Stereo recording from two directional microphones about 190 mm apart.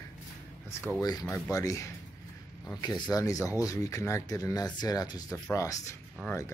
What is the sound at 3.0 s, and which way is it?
Speech, 20° left (ahead or behind).